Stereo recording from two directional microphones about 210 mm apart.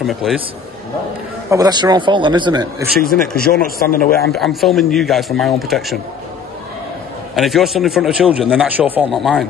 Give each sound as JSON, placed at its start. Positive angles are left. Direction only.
{"t": 0.0, "sound": "a man's voice", "side_deg": 0}
{"t": 1.5, "sound": "a man's voice", "side_deg": -20}
{"t": 3.3, "sound": "speech", "side_deg": 45}
{"t": 4.3, "sound": "a man's voice", "side_deg": 0}
{"t": 7.3, "sound": "a man's voice", "side_deg": 0}